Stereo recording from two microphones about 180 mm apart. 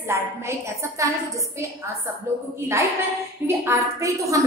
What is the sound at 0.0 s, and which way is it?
A woman's voice, 15° right (ahead or behind).